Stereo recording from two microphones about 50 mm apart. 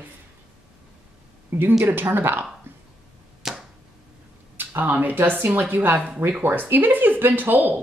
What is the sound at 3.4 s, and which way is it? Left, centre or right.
Arrow, centre.